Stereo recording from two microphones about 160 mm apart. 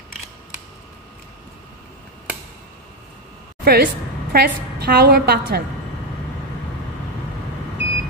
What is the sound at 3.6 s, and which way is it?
A woman's voice, 75° right (ahead or behind).